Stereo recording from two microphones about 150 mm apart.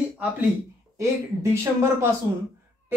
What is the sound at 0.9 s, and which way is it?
Speech, 20° right (ahead or behind).